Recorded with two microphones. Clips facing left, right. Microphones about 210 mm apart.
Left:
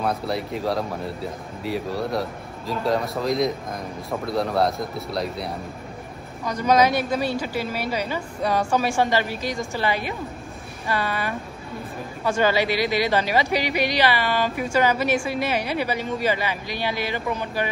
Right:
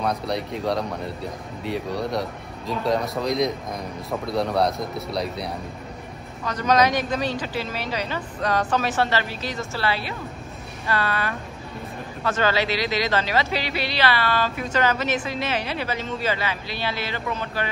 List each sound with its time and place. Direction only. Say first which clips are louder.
0.0 s speech: even; 5° left (ahead or behind)
6.4 s a man's voice: left 1 dB; 10° left (ahead or behind)